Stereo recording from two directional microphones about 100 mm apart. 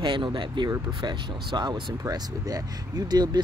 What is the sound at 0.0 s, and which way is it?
Speech, 50° right (ahead or behind).